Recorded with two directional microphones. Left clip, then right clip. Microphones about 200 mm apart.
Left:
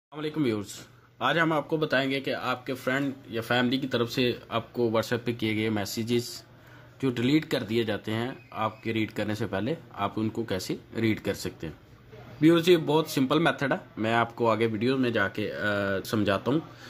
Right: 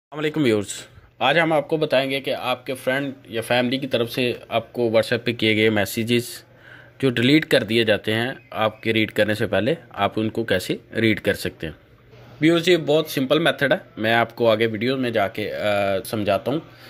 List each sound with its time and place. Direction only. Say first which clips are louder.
0.1 s speech: right 9 dB; 20° right (ahead or behind)
12.4 s speech: right 3 dB; centre (ahead or behind)